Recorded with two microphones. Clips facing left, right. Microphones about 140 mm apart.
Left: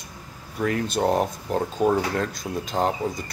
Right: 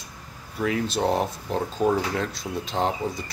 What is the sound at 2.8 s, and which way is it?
Speech, centre (ahead or behind).